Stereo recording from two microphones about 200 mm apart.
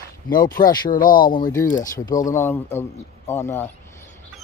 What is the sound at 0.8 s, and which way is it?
Speech, 45° left (ahead or behind).